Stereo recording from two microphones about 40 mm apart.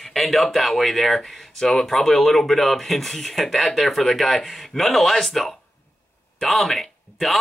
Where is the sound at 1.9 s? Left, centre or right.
Centre.